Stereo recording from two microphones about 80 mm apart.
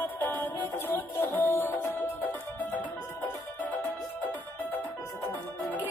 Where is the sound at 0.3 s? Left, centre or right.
Left.